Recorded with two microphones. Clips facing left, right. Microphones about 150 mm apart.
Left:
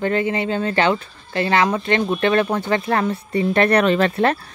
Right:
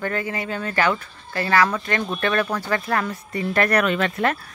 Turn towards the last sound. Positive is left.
turn(degrees=30)  # may be behind; listen again after turning